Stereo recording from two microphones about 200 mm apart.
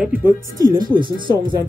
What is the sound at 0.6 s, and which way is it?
Speech, 20° right (ahead or behind).